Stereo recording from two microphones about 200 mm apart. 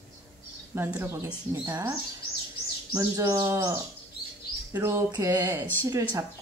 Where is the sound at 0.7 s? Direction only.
10° right (ahead or behind).